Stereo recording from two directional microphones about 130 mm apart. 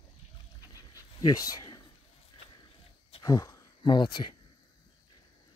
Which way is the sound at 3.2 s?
25° left (ahead or behind).